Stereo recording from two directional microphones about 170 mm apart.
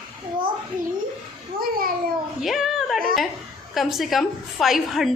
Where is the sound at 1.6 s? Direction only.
60° right (ahead or behind).